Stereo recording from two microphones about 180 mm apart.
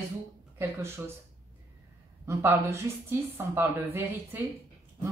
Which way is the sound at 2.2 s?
15° right (ahead or behind).